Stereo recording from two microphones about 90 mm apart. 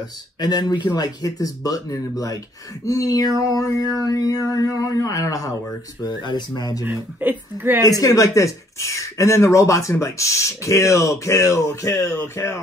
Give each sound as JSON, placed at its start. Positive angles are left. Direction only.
{"t": 0.4, "sound": "speech", "side_deg": 45}
{"t": 6.0, "sound": "speech", "side_deg": 50}
{"t": 6.8, "sound": "speech", "side_deg": -20}
{"t": 7.8, "sound": "speech", "side_deg": 40}